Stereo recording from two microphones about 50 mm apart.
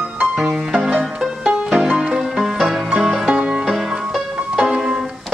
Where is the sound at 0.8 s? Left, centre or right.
Centre.